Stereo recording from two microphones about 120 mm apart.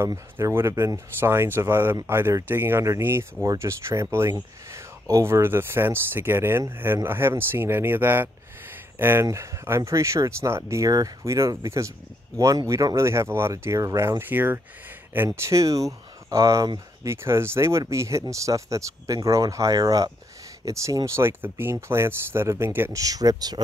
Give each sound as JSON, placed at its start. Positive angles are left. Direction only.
{"t": 0.0, "sound": "speech", "side_deg": -25}